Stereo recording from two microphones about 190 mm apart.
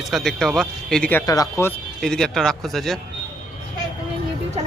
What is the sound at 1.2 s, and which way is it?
Speech, 20° left (ahead or behind).